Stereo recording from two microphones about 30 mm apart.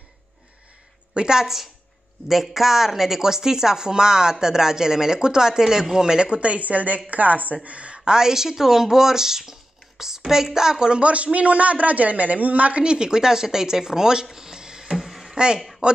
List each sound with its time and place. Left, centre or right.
1.1 s a woman's voice: right
1.4 s speech: centre
6.1 s speech: right
6.4 s a woman's voice: right
7.6 s speech: right
8.0 s speech: right
11.0 s a woman's voice: right
12.8 s speech: right
14.3 s music: centre
15.0 s a sound: centre
15.3 s speech: right